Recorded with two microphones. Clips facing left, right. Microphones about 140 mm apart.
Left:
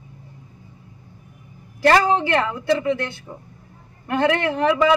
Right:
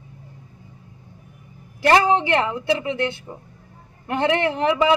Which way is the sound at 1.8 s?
20° right (ahead or behind).